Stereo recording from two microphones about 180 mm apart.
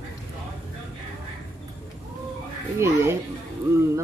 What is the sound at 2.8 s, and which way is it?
Speech, 15° right (ahead or behind).